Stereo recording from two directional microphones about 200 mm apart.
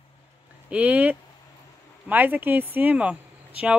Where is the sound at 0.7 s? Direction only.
5° right (ahead or behind).